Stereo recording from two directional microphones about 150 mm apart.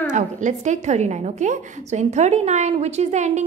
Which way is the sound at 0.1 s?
55° right (ahead or behind).